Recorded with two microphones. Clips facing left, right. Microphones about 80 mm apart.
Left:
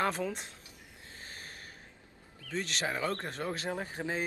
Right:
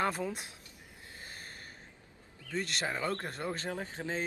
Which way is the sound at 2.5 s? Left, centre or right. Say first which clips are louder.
Left 1 dB; centre.